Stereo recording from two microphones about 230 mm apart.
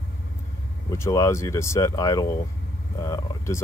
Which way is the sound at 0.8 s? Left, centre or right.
Centre.